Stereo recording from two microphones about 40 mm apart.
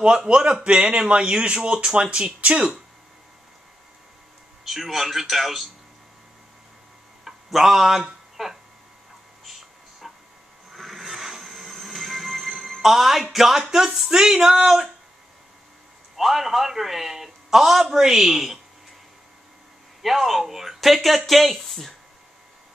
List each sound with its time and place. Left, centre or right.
0.0 s speech: right
4.6 s a man's voice: centre
7.2 s a sound: centre
9.4 s music: centre
10.7 s train: centre
13.3 s a man's voice: centre
16.2 s a man's voice: centre
20.0 s speech: centre